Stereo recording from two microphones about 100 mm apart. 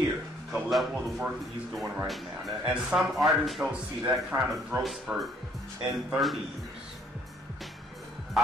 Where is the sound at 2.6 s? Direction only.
10° right (ahead or behind).